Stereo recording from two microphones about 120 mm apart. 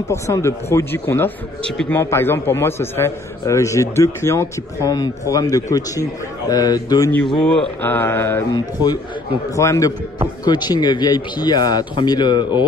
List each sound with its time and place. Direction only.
0.1 s a man's voice: 25° left (ahead or behind)
7.3 s mantra: 5° left (ahead or behind)
7.8 s mantra: 15° left (ahead or behind)
9.6 s a man's voice: 25° left (ahead or behind)